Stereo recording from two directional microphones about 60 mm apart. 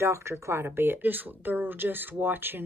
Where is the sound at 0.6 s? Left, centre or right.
Right.